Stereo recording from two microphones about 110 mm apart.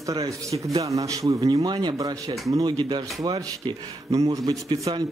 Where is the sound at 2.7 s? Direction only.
45° right (ahead or behind).